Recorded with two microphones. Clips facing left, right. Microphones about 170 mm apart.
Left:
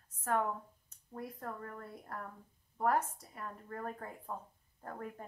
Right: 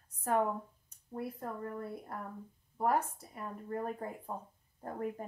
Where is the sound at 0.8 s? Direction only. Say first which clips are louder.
Right 4 dB; 10° right (ahead or behind).